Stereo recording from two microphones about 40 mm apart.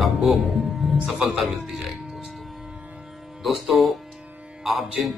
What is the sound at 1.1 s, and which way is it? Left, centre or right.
Speech, centre.